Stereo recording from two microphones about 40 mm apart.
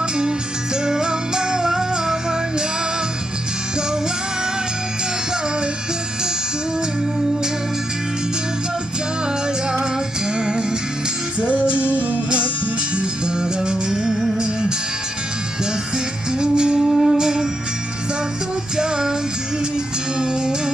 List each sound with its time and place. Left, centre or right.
0.8 s music: centre
10.3 s music: right
11.4 s music: right
12.9 s music: right
16.3 s music: right
18.8 s music: centre
20.2 s music: centre